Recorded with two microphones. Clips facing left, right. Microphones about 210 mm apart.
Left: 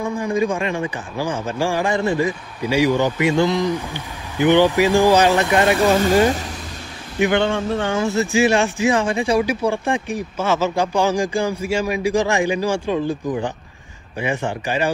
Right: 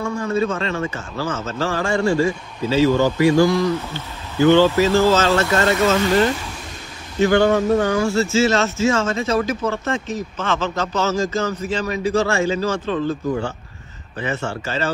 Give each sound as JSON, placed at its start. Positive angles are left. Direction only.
{"t": 0.0, "sound": "speech", "side_deg": 15}
{"t": 7.2, "sound": "speech", "side_deg": 20}
{"t": 7.4, "sound": "speech", "side_deg": -45}
{"t": 8.0, "sound": "speech", "side_deg": 15}